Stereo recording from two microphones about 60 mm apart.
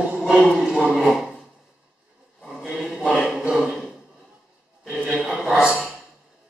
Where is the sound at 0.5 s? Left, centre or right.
Centre.